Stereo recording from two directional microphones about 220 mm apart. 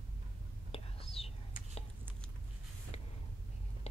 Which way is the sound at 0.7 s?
25° left (ahead or behind).